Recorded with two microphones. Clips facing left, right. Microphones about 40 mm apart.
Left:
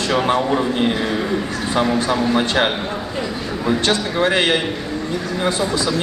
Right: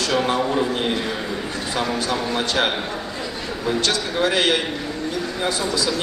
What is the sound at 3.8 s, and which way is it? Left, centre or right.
Speech, left.